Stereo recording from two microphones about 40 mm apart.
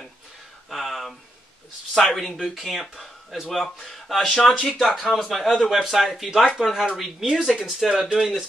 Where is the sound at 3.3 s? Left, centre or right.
Centre.